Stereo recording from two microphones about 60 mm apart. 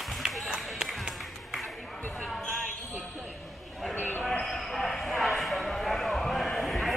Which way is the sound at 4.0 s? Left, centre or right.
Left.